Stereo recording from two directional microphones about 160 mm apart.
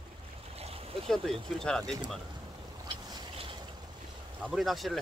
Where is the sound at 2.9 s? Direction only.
35° right (ahead or behind).